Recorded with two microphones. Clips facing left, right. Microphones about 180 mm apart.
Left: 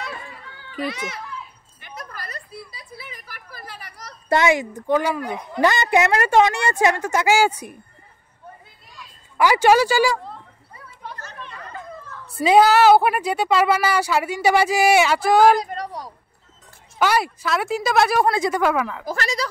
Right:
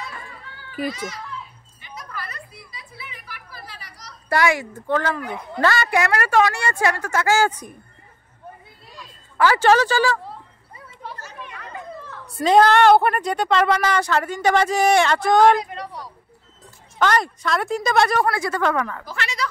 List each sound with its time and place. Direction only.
0.8 s a child's voice: 65° left (ahead or behind)
1.8 s a sound: 50° left (ahead or behind)
4.3 s speech: 20° left (ahead or behind)
9.4 s speech: 15° left (ahead or behind)
11.0 s children playing: 5° right (ahead or behind)
12.4 s speech: 10° left (ahead or behind)
15.6 s a sound: 40° left (ahead or behind)
17.0 s speech: 10° left (ahead or behind)
18.2 s speech: 20° left (ahead or behind)
18.6 s speech: 5° left (ahead or behind)
19.0 s speech: 40° left (ahead or behind)